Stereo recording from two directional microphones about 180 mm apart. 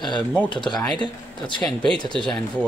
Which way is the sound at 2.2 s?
5° left (ahead or behind).